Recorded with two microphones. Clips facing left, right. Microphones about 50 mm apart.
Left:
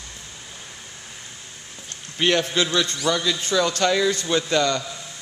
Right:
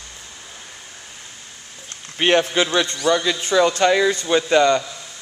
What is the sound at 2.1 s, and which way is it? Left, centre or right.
A man's voice, right.